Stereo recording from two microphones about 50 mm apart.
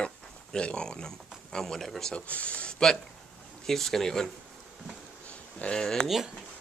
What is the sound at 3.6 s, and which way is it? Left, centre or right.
Speech, centre.